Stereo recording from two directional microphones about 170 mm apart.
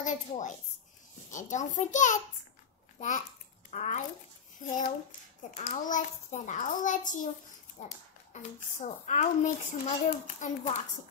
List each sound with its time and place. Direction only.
0.0 s a child's voice: 45° left (ahead or behind)
3.7 s a child's voice: 45° left (ahead or behind)